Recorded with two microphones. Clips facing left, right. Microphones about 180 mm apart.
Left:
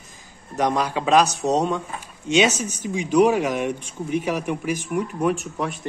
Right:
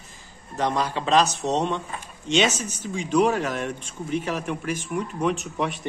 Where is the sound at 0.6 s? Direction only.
15° left (ahead or behind).